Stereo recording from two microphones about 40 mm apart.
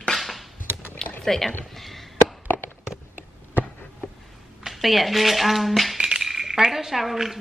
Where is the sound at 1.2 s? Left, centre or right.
Centre.